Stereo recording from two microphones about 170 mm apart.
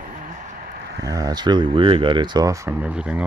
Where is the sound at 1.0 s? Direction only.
20° right (ahead or behind).